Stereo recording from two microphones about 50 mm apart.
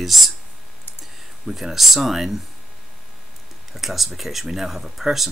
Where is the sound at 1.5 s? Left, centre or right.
Centre.